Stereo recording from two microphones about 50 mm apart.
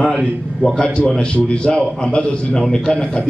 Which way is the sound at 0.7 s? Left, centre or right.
Centre.